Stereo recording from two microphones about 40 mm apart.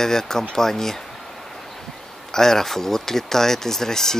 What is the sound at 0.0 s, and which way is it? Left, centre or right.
Speech, centre.